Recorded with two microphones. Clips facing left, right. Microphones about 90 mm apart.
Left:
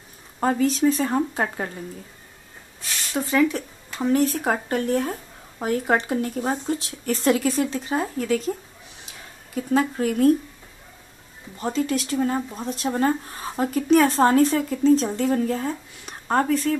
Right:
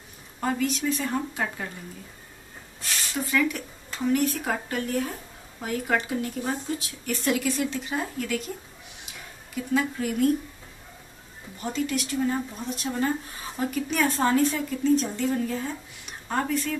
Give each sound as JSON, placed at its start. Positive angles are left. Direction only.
{"t": 0.4, "sound": "speech", "side_deg": 35}
{"t": 3.2, "sound": "speech", "side_deg": 30}
{"t": 9.6, "sound": "speech", "side_deg": 40}
{"t": 11.6, "sound": "speech", "side_deg": 35}